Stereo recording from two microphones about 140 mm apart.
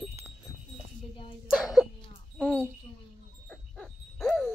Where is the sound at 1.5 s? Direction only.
Centre (ahead or behind).